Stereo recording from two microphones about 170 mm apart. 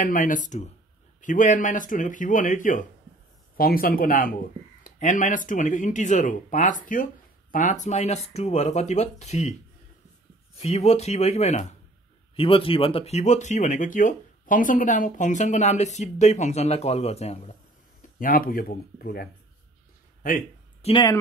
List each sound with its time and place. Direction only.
0.0 s speech: 50° left (ahead or behind)
3.5 s speech: 60° left (ahead or behind); by 9.6 s 40° left (ahead or behind)
10.6 s speech: 40° left (ahead or behind)
18.0 s speech: 55° left (ahead or behind)
20.8 s speech: 30° left (ahead or behind)